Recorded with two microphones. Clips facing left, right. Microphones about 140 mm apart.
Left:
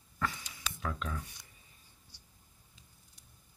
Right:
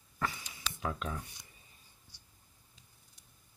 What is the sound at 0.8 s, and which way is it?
Speech, 25° right (ahead or behind).